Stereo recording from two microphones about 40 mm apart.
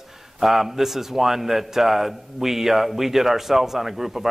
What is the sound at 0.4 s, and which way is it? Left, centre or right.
A man's voice, centre.